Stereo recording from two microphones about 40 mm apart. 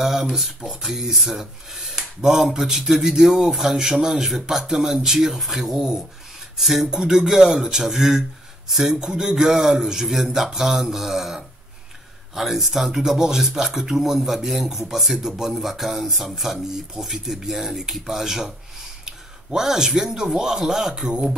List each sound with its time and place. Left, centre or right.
0.0 s speech: centre
21.1 s speech: right